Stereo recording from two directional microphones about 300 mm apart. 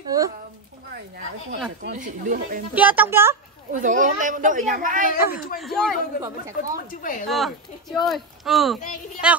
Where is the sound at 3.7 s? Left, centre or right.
Right.